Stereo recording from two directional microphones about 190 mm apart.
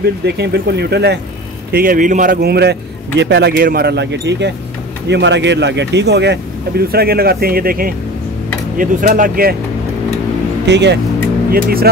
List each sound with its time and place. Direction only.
0.2 s a man's voice: 60° right (ahead or behind)
1.7 s a man's voice: 50° right (ahead or behind)
10.6 s speech: 65° right (ahead or behind)
11.5 s speech: 50° right (ahead or behind)